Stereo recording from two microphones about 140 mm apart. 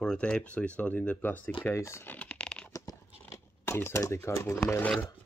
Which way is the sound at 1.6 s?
20° left (ahead or behind).